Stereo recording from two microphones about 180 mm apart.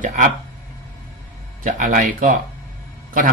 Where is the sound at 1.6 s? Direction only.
50° right (ahead or behind).